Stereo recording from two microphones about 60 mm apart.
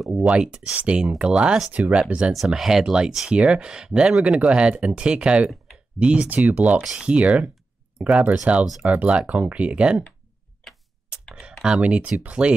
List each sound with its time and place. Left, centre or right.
0.0 s speech: centre
0.3 s speech: centre
1.7 s speech: right
2.3 s speech: centre
11.6 s speech: centre